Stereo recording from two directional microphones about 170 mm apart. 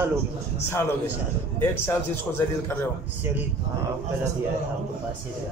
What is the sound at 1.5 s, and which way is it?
Speech, 10° left (ahead or behind).